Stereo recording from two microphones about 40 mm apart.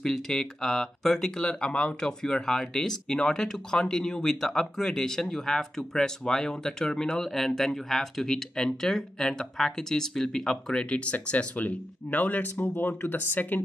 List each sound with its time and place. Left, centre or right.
0.0 s speech: centre
7.2 s speech: centre
10.9 s speech: left